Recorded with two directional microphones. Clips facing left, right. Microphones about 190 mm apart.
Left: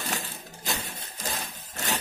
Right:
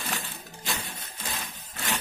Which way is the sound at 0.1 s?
40° left (ahead or behind).